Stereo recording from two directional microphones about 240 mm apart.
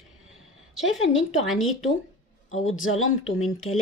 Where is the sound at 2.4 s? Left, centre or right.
Left.